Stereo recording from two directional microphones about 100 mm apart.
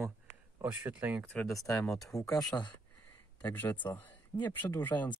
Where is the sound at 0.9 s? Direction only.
15° right (ahead or behind).